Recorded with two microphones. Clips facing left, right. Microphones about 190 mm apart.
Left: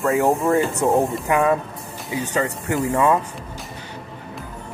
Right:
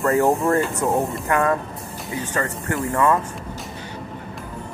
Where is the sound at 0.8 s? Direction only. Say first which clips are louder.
Left 3 dB; 25° left (ahead or behind).